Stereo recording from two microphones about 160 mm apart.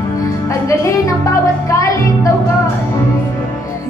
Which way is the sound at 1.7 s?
20° left (ahead or behind).